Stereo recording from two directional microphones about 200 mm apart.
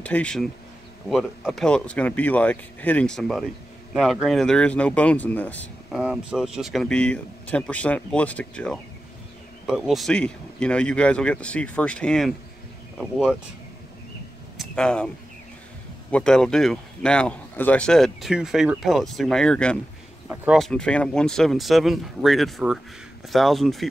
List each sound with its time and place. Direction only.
0.0 s speech: 5° left (ahead or behind)
14.6 s speech: 5° left (ahead or behind)
16.1 s speech: 5° left (ahead or behind)